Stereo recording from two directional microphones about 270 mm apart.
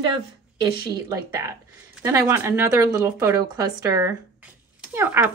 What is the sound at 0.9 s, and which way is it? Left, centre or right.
Speech, centre.